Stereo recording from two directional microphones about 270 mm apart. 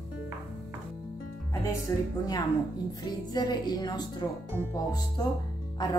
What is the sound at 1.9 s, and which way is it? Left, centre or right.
Speech, centre.